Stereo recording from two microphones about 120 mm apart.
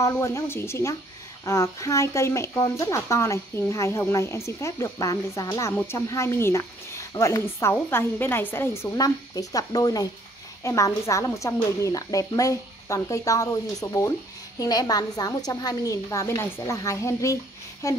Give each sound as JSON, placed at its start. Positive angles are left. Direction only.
{"t": 0.0, "sound": "speech", "side_deg": 25}
{"t": 8.9, "sound": "speech", "side_deg": 30}